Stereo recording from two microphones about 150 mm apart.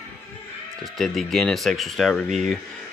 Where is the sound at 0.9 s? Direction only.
Centre (ahead or behind).